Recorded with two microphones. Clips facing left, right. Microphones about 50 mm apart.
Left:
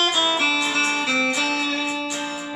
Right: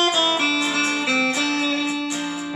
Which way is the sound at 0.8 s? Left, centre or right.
Left.